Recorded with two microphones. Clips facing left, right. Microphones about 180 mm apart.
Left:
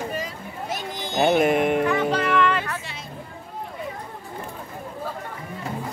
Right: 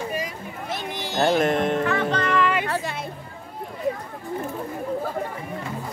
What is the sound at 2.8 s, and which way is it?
Music, 50° right (ahead or behind).